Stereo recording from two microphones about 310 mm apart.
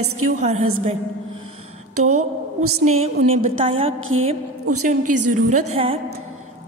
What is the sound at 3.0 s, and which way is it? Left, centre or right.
Speech, centre.